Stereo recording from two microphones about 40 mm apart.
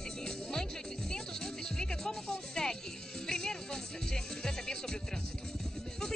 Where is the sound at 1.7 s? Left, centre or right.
Centre.